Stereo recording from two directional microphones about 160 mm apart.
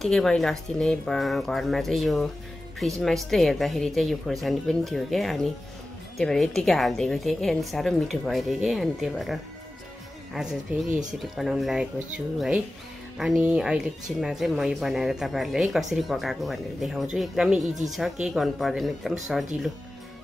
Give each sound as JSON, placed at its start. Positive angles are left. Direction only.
{"t": 0.0, "sound": "speech", "side_deg": 0}
{"t": 10.9, "sound": "speech", "side_deg": -50}
{"t": 11.2, "sound": "speech", "side_deg": 0}